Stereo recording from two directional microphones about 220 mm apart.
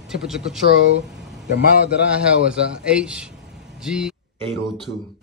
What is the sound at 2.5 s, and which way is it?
Speech, 5° right (ahead or behind).